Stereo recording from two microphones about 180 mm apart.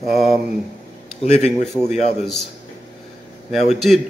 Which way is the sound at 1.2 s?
40° left (ahead or behind).